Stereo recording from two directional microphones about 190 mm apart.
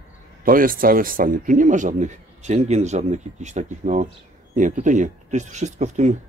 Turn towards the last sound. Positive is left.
turn(degrees=-35)  # may be behind; listen again after turning